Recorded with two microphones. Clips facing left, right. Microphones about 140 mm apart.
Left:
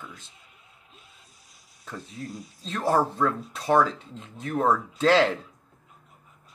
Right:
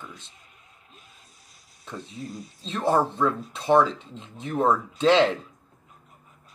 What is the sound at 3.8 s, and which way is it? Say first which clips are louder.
Speech: right 1 dB; 25° right (ahead or behind).